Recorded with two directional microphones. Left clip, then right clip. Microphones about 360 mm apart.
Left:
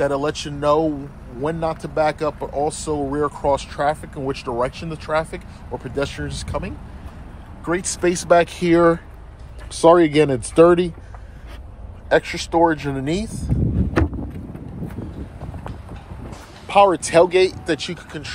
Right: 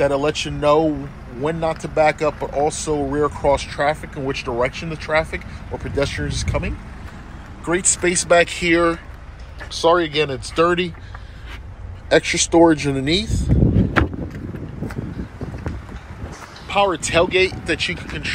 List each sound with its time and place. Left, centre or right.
0.0 s speech: centre
12.1 s speech: centre
16.6 s speech: centre